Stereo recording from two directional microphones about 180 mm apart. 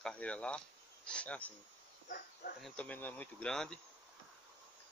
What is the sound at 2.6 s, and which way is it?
Speech, 5° left (ahead or behind).